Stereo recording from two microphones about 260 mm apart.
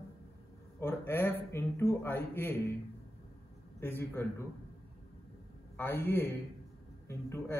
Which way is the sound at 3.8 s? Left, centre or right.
Centre.